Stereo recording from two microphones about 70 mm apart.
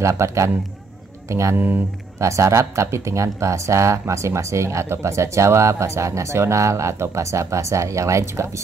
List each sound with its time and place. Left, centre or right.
0.0 s speech: right